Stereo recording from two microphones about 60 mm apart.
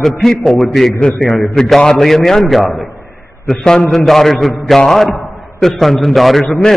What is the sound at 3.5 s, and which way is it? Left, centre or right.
A man's voice, centre.